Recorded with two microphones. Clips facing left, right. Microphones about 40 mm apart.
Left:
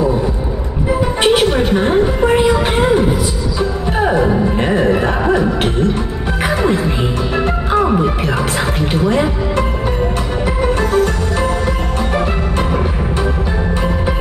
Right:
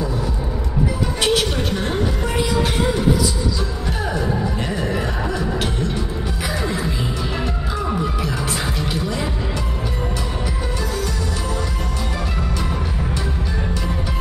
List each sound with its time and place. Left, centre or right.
1.2 s a sound: left
4.0 s music: left
10.8 s music: left